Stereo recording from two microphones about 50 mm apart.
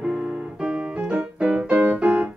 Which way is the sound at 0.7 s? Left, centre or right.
Right.